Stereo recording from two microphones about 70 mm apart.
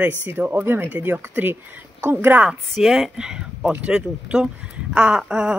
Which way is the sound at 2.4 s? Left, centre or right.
Centre.